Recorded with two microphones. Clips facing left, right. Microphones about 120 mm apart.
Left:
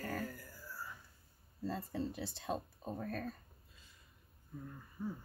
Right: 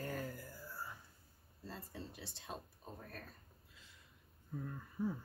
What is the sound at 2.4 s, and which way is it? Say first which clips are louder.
Speech: left 8 dB; 90° left.